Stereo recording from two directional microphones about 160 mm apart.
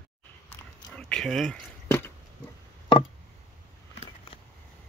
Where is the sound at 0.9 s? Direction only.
5° left (ahead or behind).